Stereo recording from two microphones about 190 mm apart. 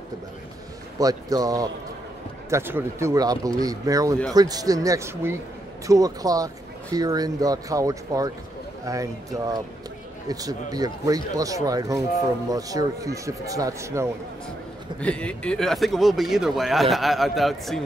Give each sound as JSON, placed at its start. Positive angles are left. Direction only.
{"t": 0.9, "sound": "speech", "side_deg": -20}
{"t": 10.2, "sound": "speech", "side_deg": -20}
{"t": 15.0, "sound": "speech", "side_deg": 5}